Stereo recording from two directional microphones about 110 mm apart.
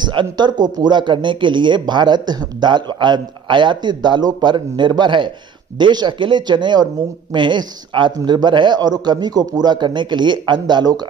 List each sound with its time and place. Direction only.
0.0 s speech: 45° right (ahead or behind)